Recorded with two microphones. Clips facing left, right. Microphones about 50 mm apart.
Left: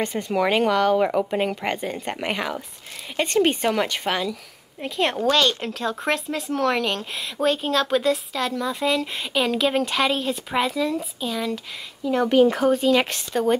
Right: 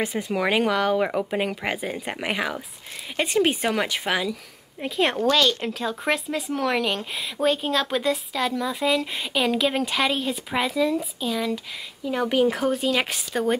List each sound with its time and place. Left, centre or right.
0.0 s speech: centre